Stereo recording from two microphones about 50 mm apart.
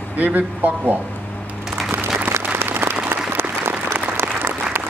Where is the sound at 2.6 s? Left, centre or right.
Right.